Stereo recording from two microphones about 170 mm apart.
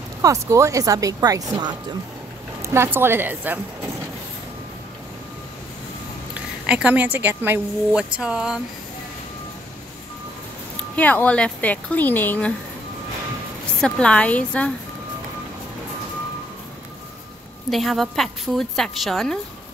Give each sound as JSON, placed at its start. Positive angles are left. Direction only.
{"t": 0.2, "sound": "speech", "side_deg": -20}
{"t": 6.6, "sound": "speech", "side_deg": -5}
{"t": 11.0, "sound": "a woman's voice", "side_deg": 10}
{"t": 13.7, "sound": "a woman's voice", "side_deg": 5}
{"t": 17.6, "sound": "a woman's voice", "side_deg": 0}